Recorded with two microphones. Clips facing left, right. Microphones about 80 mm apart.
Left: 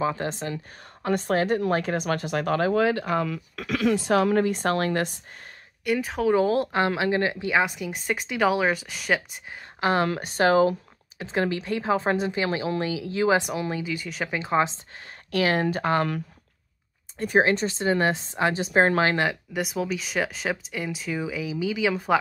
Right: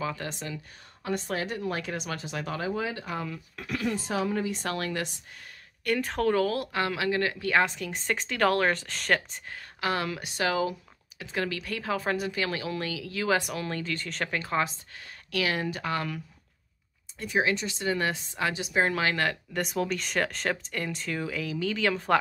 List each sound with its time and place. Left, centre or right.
0.0 s a woman's voice: left
1.0 s speech: left
5.9 s speech: centre
6.3 s speech: left; by 9.6 s centre
9.8 s speech: left
15.3 s a woman's voice: left
17.2 s a woman's voice: left
19.1 s speech: centre